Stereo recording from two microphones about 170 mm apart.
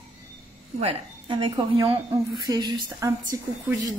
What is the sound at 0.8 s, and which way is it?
A woman's voice, 30° right (ahead or behind).